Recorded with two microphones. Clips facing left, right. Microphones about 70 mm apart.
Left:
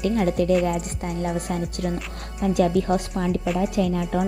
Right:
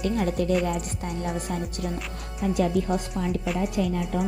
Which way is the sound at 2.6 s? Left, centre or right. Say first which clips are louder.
Left 4 dB; left.